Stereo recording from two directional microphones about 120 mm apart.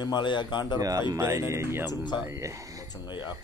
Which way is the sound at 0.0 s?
40° left (ahead or behind).